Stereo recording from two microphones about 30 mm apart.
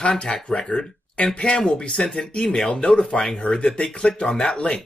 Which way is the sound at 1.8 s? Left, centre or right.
Left.